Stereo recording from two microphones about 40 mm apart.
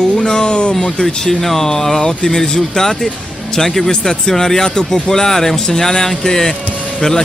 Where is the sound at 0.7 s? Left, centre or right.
Centre.